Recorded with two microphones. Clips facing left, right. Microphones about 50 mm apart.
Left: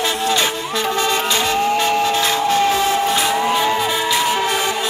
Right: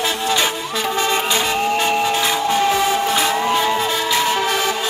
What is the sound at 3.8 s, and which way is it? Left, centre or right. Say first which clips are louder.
Music: left 1 dB; centre.